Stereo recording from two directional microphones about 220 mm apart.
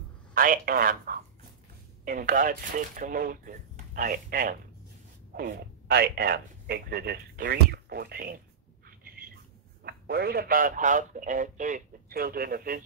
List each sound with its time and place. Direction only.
0.3 s a man's voice: 40° right (ahead or behind)
9.8 s a man's voice: 45° right (ahead or behind)